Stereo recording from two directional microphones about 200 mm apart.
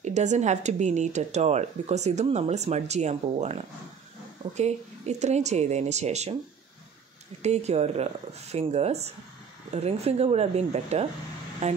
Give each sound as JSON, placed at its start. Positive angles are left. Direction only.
{"t": 0.0, "sound": "speech", "side_deg": -35}
{"t": 7.4, "sound": "speech", "side_deg": -35}